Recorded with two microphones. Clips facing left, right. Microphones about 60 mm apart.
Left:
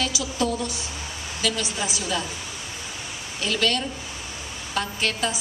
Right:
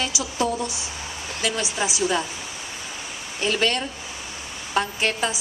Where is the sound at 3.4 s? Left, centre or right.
Right.